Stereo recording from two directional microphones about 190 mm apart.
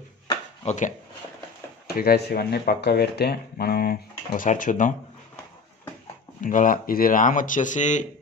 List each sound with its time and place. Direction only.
0.3 s a sound: 40° left (ahead or behind)
2.0 s speech: 55° left (ahead or behind)
6.4 s speech: 45° left (ahead or behind)